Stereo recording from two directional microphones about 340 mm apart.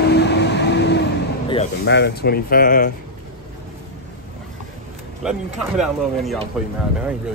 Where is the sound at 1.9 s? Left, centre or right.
Left.